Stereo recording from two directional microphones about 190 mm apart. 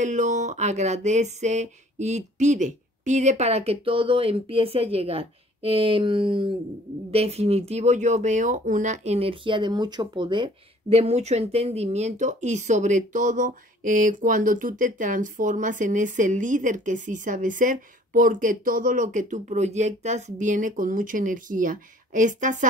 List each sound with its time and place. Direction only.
0.0 s speech: 40° right (ahead or behind)